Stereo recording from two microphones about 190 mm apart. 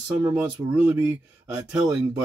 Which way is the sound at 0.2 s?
5° right (ahead or behind).